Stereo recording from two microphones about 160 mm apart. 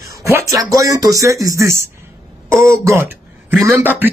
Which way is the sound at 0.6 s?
20° right (ahead or behind).